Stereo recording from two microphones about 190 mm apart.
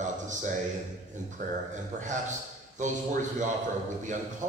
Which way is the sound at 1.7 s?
40° right (ahead or behind).